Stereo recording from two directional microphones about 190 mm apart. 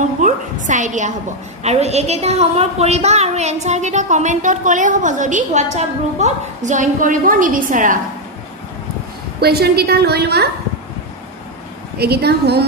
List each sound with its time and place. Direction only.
0.2 s a woman's voice: 40° right (ahead or behind)
9.4 s a woman's voice: 55° right (ahead or behind)
12.0 s a woman's voice: 55° right (ahead or behind)